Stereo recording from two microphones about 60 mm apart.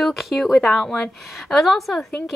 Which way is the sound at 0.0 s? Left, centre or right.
Centre.